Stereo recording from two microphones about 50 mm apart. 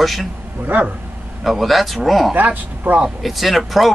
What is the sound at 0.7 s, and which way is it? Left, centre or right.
Speech, right.